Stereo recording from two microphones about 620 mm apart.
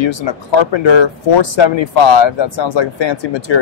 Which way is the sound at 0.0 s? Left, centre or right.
Left.